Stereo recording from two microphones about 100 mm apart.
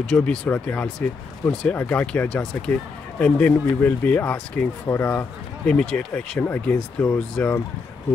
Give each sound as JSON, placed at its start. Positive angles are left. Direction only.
{"t": 0.1, "sound": "speech", "side_deg": 15}
{"t": 5.7, "sound": "speech", "side_deg": 10}